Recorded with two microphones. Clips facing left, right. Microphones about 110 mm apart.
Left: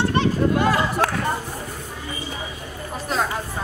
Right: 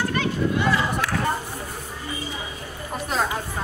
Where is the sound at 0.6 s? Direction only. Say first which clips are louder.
Left 3 dB; 45° left (ahead or behind).